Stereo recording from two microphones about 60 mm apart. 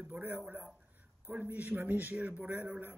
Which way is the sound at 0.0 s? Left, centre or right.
Right.